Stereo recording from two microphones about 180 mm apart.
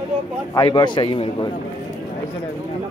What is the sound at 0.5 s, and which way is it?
Speech, 25° left (ahead or behind).